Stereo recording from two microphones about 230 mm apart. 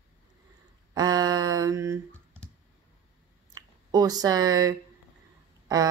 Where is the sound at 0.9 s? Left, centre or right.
Centre.